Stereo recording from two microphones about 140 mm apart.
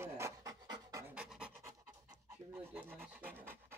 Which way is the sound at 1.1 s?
5° right (ahead or behind).